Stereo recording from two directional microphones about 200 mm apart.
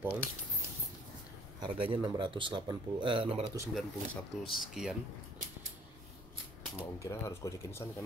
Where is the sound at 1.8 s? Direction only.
25° right (ahead or behind).